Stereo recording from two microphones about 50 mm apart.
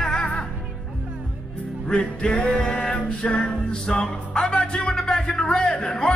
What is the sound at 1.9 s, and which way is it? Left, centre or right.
Music, centre.